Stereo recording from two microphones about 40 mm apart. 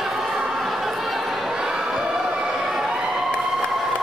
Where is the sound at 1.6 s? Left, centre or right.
Centre.